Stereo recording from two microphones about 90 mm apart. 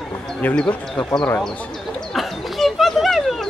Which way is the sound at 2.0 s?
Centre (ahead or behind).